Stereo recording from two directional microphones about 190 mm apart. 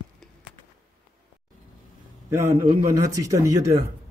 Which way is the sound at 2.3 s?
15° right (ahead or behind).